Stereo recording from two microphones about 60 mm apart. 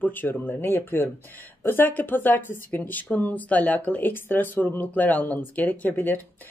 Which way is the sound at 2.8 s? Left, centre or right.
Left.